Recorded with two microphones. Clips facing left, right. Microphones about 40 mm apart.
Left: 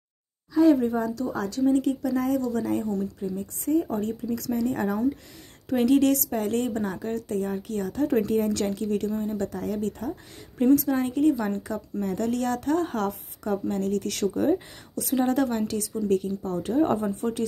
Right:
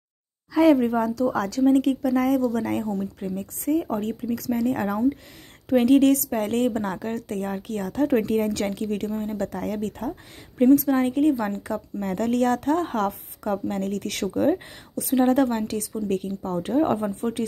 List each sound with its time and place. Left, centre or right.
0.7 s speech: right
1.7 s a woman's voice: right
3.8 s speech: right
4.6 s a woman's voice: right
10.6 s speech: right
15.0 s a woman's voice: right
15.2 s speech: right